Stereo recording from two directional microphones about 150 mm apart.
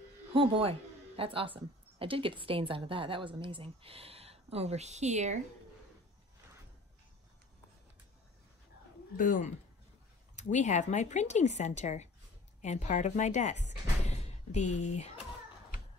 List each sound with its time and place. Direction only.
0.3 s a woman's voice: 35° right (ahead or behind)
9.1 s speech: 60° left (ahead or behind)
10.3 s speech: 50° left (ahead or behind)